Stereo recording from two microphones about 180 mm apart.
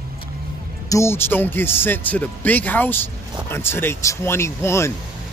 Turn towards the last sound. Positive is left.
turn(degrees=15)  # may be behind; listen again after turning